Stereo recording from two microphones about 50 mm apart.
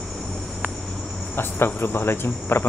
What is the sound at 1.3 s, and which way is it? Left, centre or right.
Speech, left.